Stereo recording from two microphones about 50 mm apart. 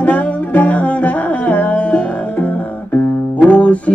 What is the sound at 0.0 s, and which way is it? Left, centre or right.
Music, left.